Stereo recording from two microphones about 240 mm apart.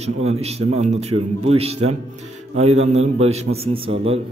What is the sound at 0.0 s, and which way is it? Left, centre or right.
A man's voice, right.